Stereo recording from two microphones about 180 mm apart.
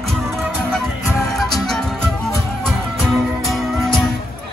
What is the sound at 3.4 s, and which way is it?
Music, centre (ahead or behind).